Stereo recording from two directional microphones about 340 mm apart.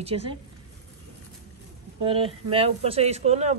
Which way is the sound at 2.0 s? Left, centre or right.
Centre.